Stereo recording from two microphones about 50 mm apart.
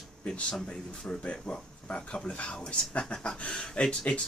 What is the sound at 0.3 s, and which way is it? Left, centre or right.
Speech, centre.